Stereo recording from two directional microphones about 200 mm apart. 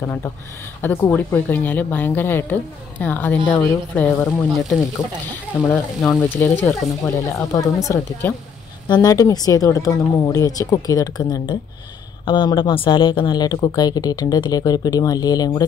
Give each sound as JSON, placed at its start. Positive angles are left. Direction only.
{"t": 0.8, "sound": "a woman's voice", "side_deg": 10}
{"t": 6.2, "sound": "a woman's voice", "side_deg": 10}